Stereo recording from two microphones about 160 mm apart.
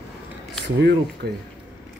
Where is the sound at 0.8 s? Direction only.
90° right.